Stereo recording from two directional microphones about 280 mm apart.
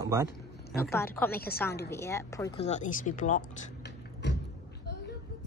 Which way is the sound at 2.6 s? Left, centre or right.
Left.